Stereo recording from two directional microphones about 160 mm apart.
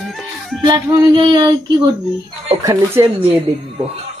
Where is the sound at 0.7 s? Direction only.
25° right (ahead or behind).